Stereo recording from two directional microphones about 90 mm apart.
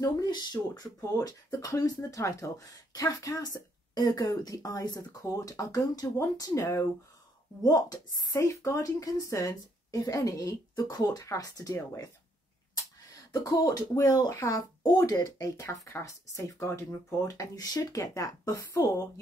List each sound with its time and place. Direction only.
0.0 s speech: 50° left (ahead or behind)
7.6 s speech: 45° left (ahead or behind)
13.3 s speech: 45° left (ahead or behind)